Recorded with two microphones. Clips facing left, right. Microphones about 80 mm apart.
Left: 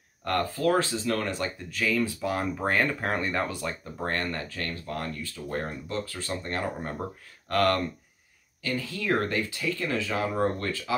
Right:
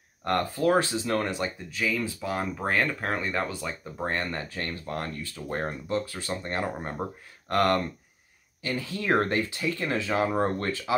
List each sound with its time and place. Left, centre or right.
0.2 s speech: right
1.3 s speech: centre
4.1 s speech: centre; by 5.9 s right
6.0 s speech: centre